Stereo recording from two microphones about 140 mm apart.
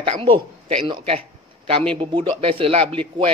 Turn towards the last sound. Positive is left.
turn(degrees=-40)  # may be behind; listen again after turning